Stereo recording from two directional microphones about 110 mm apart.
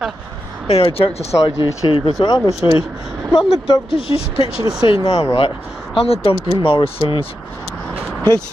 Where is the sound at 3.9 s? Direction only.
55° left (ahead or behind).